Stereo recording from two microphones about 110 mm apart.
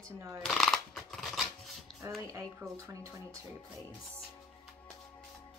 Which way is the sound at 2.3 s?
30° right (ahead or behind).